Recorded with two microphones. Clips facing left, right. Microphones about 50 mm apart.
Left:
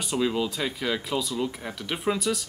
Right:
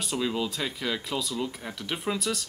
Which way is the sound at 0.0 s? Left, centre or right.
Centre.